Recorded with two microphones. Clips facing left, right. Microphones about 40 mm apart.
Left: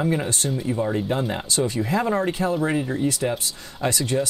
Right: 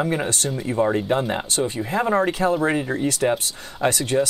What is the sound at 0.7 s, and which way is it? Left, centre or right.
Speech, right.